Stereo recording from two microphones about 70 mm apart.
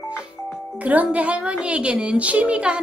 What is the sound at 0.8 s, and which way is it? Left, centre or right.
A woman's voice, right.